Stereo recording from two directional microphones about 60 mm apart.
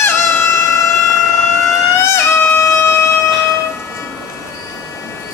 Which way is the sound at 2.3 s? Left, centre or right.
Left.